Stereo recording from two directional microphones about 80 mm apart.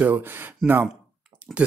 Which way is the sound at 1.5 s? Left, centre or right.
Centre.